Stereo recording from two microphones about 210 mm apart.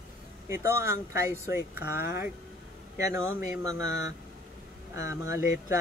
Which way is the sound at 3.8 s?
55° left (ahead or behind).